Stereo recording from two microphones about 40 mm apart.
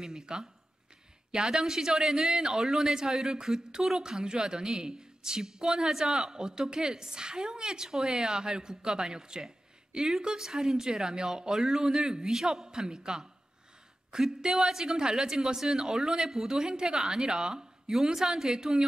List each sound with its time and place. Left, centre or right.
0.0 s a woman's voice: centre
9.9 s a woman's voice: centre